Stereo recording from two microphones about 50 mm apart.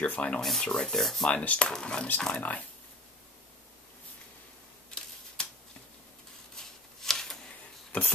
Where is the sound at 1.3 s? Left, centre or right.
Left.